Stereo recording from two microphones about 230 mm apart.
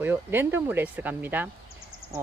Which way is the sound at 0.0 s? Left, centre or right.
Centre.